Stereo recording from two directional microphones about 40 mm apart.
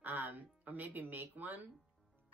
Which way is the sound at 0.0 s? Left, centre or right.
Right.